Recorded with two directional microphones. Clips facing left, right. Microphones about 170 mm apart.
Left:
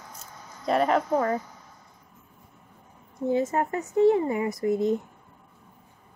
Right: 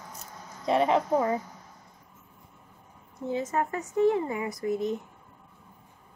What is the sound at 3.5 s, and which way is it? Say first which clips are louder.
Speech: left 3 dB; 30° left (ahead or behind).